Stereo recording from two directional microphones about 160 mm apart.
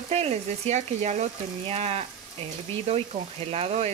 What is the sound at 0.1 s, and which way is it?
Speech, 45° right (ahead or behind).